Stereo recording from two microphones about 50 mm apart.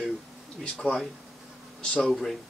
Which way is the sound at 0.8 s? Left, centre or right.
Left.